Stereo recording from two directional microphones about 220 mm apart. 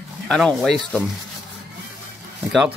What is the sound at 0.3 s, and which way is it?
Speech, centre (ahead or behind).